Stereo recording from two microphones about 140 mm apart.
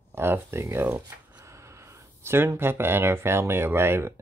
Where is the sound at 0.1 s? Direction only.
15° right (ahead or behind).